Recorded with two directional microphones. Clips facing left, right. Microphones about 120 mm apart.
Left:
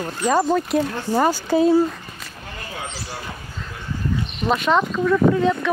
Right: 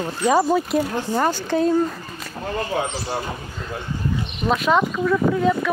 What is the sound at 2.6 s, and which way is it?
Speech, 35° right (ahead or behind).